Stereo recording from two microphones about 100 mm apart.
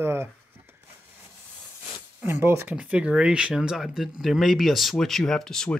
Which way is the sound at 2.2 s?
25° right (ahead or behind).